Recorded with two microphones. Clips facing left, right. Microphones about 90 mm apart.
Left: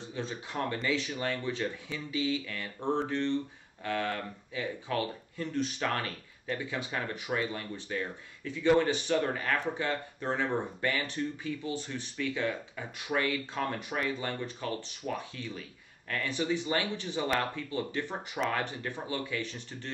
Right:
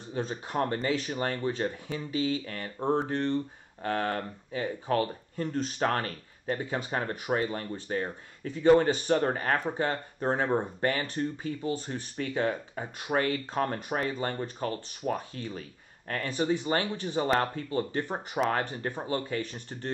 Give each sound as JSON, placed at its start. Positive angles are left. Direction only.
{"t": 0.1, "sound": "speech", "side_deg": -40}